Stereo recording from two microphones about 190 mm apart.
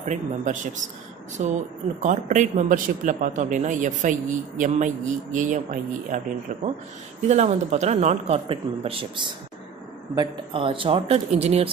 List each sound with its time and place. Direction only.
0.0 s a man's voice: 40° right (ahead or behind)